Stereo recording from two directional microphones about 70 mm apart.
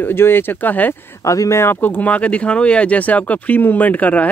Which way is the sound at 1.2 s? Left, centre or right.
Left.